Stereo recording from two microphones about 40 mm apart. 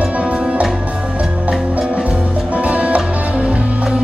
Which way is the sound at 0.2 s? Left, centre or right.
Right.